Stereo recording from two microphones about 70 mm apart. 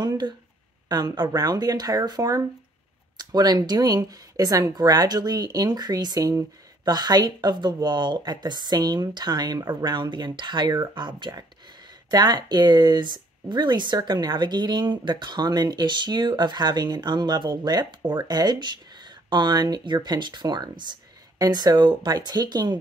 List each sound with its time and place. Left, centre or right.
0.8 s speech: right